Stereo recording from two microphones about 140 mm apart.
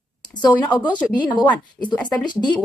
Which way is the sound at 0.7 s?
35° left (ahead or behind).